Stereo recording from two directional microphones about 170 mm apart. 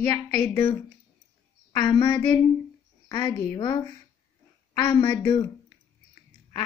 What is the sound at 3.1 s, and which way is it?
Speech, 15° left (ahead or behind).